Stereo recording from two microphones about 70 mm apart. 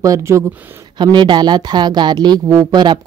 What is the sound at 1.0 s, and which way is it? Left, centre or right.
A woman's voice, right.